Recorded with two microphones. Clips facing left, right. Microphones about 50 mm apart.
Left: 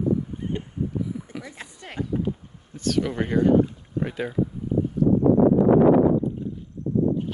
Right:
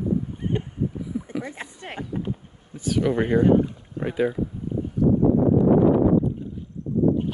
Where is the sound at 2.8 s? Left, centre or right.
Centre.